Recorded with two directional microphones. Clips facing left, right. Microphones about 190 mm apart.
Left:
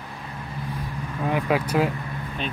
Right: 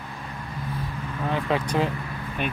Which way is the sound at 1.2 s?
10° left (ahead or behind).